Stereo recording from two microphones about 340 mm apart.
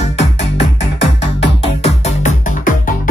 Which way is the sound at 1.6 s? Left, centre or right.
Centre.